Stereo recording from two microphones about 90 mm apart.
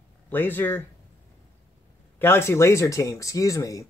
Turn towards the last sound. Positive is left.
turn(degrees=40)  # may be behind; listen again after turning